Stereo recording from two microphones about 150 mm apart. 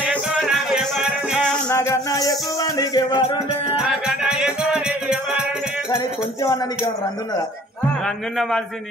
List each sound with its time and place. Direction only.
0.0 s music: 10° right (ahead or behind)
1.7 s music: 20° left (ahead or behind)
3.7 s music: 5° right (ahead or behind)
8.4 s a man's voice: centre (ahead or behind)